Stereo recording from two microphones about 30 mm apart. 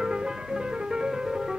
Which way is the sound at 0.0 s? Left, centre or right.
Right.